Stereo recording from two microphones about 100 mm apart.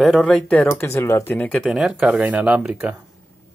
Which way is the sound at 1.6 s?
5° right (ahead or behind).